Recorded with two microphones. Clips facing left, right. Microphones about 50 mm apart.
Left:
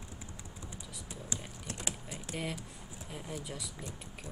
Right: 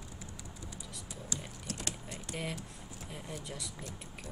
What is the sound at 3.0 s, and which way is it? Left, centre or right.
Speech, centre.